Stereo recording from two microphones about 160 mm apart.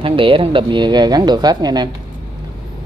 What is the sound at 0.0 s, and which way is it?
A woman's voice, 35° right (ahead or behind).